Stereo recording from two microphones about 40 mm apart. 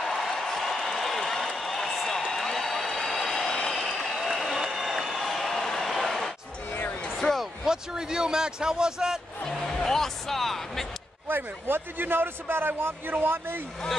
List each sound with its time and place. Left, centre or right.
0.0 s a sound: centre
4.0 s applause: centre
4.6 s a sound: centre
7.6 s a man's voice: centre
9.7 s speech: centre
11.2 s a man's voice: right